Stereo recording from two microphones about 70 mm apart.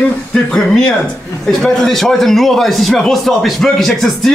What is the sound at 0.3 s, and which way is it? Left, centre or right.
A man's voice, centre.